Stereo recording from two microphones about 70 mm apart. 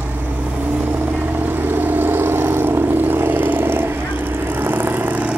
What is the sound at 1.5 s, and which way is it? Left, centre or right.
Vehicle, right.